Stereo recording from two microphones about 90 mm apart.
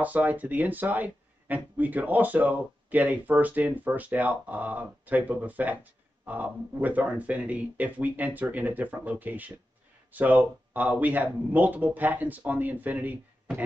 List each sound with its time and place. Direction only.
0.0 s speech: 20° right (ahead or behind)